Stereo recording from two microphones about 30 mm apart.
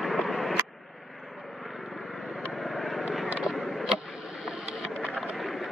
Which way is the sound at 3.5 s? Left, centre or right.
Centre.